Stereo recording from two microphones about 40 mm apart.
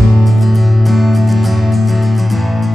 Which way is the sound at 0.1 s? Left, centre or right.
Centre.